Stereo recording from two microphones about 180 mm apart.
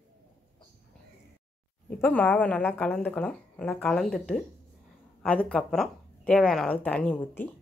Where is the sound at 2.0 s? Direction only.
10° left (ahead or behind).